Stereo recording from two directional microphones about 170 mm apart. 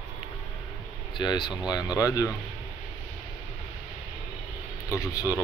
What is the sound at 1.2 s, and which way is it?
Speech, 25° left (ahead or behind).